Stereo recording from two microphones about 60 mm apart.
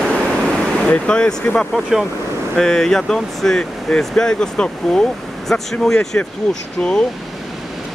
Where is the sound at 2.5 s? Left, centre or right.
Centre.